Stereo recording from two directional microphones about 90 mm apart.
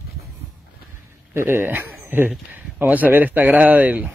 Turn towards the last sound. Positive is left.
turn(degrees=-15)  # may be behind; listen again after turning